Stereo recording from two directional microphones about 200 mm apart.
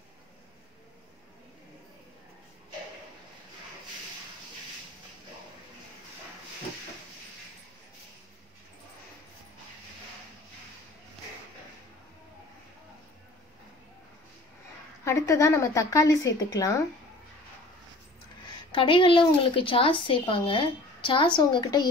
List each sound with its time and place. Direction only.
15.0 s speech: 15° left (ahead or behind)
18.7 s a woman's voice: 25° left (ahead or behind)